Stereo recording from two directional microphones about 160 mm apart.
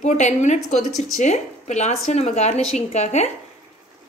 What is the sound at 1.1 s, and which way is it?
Speech, 45° left (ahead or behind).